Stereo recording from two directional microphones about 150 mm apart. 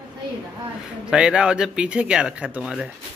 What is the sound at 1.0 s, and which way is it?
Speech, 5° right (ahead or behind).